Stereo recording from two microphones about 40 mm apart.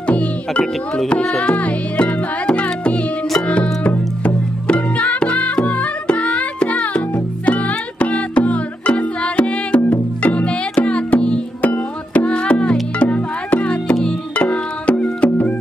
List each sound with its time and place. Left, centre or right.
0.0 s music: left
0.6 s speech: left
1.3 s music: left
11.6 s music: left
12.3 s music: left
13.0 s music: left
15.0 s music: left